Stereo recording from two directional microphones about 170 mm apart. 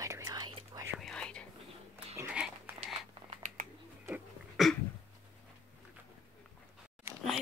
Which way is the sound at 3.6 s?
55° right (ahead or behind).